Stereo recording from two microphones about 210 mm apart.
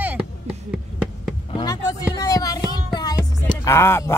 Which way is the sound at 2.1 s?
15° left (ahead or behind).